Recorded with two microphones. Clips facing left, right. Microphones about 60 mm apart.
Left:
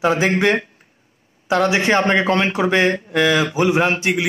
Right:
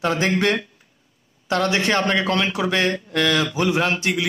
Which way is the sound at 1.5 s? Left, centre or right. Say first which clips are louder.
Left 4 dB; centre.